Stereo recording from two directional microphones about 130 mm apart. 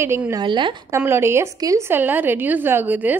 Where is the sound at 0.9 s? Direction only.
20° right (ahead or behind).